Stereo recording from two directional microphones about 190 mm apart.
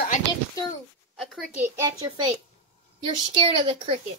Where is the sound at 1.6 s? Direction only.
15° right (ahead or behind).